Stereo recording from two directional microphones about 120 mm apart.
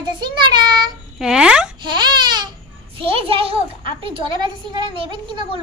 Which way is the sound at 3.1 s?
50° right (ahead or behind).